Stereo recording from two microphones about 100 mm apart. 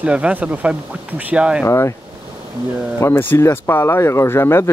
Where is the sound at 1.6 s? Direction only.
30° left (ahead or behind).